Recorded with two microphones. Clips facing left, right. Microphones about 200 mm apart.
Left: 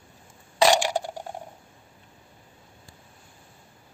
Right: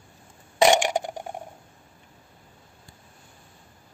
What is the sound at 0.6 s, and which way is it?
Coin, 20° right (ahead or behind).